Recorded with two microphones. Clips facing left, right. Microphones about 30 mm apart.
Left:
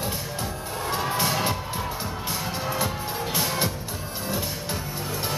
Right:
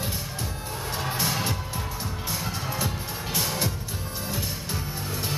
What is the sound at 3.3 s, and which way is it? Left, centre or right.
Music, left.